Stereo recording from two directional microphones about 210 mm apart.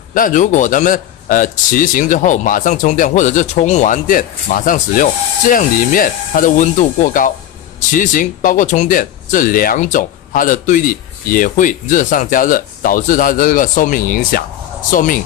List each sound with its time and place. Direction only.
0.1 s a man's voice: 40° left (ahead or behind)